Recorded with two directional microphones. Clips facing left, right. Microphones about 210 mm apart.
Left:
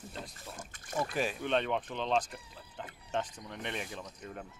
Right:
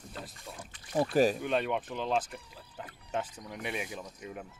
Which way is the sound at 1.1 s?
40° right (ahead or behind).